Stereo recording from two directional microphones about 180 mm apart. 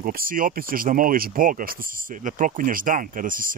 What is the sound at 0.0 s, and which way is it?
Speech, 55° right (ahead or behind).